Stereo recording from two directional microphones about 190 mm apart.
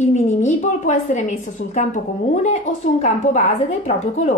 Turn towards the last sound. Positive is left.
turn(degrees=35)  # may be behind; listen again after turning